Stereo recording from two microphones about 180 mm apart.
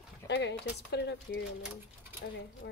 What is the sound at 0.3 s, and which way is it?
Speech, 75° left (ahead or behind).